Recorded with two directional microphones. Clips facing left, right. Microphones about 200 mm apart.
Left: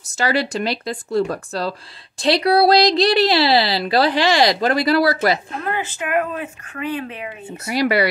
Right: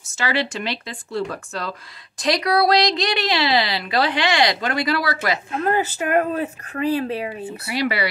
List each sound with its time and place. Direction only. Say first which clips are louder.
0.0 s speech: left 3 dB; 40° left (ahead or behind)
5.6 s speech: right 4 dB; 40° right (ahead or behind)
7.6 s speech: left 5 dB; 40° left (ahead or behind)